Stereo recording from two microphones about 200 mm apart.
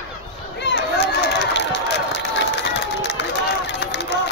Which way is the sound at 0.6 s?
60° left (ahead or behind).